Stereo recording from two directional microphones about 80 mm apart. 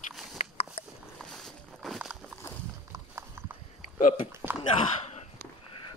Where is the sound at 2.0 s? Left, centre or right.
Centre.